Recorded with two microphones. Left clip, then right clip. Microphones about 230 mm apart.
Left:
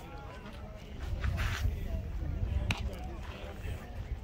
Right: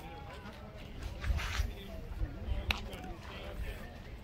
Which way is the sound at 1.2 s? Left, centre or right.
Centre.